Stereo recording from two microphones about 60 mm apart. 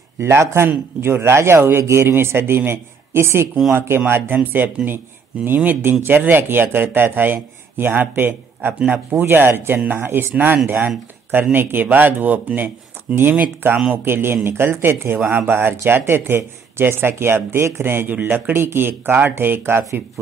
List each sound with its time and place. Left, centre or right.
0.2 s speech: right